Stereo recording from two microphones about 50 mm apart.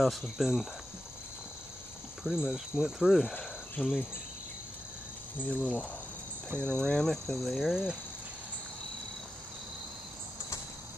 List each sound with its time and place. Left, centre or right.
0.0 s speech: centre
2.2 s speech: centre
3.3 s cricket: left
5.5 s speech: left; by 7.8 s centre